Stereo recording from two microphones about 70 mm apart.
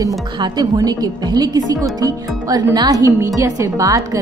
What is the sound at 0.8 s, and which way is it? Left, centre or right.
Speech, right.